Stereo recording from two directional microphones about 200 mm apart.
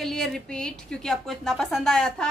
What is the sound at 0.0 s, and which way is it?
A woman's voice, centre (ahead or behind).